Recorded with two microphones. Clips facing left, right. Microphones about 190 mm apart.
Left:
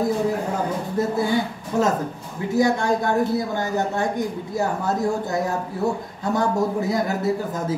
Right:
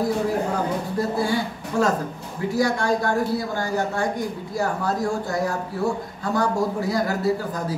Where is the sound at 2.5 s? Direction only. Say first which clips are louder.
Left 2 dB; 20° left (ahead or behind).